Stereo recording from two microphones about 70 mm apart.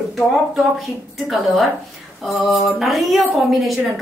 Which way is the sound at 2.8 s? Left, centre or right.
Centre.